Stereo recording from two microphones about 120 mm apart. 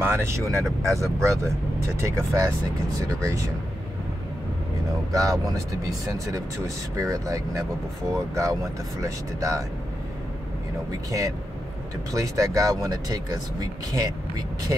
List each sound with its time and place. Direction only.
0.0 s speech: 20° right (ahead or behind)
5.1 s speech: 30° right (ahead or behind)
11.1 s speech: 30° right (ahead or behind)